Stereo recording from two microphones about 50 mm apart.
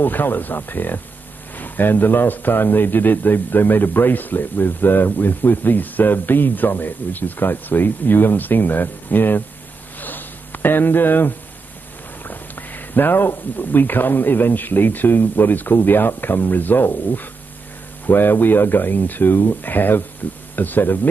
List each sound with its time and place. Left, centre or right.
0.0 s speech: left
9.9 s a sound: left
12.3 s speech: left